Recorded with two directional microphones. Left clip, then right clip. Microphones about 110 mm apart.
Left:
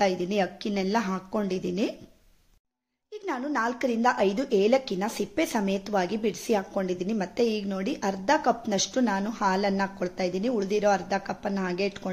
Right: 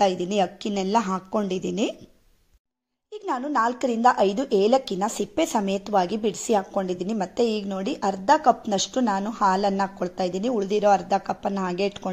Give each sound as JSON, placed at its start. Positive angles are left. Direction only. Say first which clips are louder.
{"t": 0.0, "sound": "speech", "louder": "right 4 dB", "side_deg": -20}
{"t": 3.1, "sound": "speech", "louder": "right 4 dB", "side_deg": -20}